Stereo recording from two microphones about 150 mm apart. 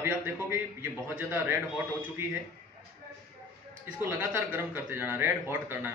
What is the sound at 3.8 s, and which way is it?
Speech, 10° right (ahead or behind).